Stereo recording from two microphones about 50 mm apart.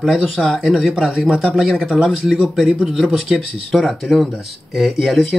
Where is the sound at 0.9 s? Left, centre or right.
Centre.